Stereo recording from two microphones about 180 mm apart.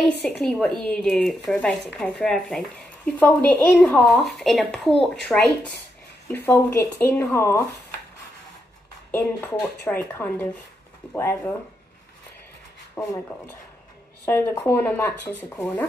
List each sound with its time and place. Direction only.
0.1 s speech: 70° left (ahead or behind)
0.4 s speech: centre (ahead or behind)
9.6 s speech: 5° left (ahead or behind)
13.0 s speech: 5° left (ahead or behind)
14.2 s speech: 15° left (ahead or behind)